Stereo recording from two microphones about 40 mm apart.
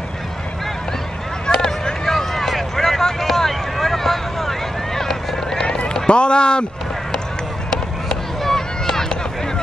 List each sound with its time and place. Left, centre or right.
1.5 s a sound: centre
2.0 s vehicle: centre
6.0 s speech: left
7.7 s chop: centre